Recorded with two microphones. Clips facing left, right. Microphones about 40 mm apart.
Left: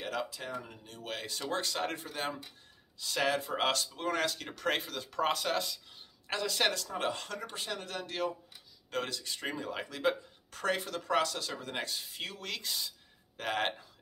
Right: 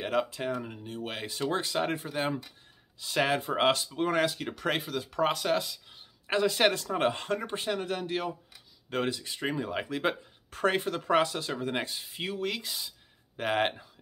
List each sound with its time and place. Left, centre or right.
0.0 s speech: right; by 5.8 s centre
5.9 s speech: centre